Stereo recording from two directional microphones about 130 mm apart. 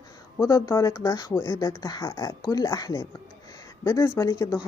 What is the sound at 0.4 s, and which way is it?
Speech, 25° left (ahead or behind).